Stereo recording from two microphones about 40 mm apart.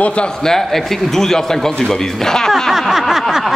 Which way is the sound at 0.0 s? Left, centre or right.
Left.